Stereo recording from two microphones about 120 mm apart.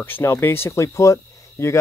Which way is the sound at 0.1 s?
20° left (ahead or behind).